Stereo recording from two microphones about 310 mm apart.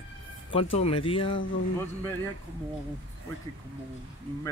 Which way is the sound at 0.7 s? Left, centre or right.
Centre.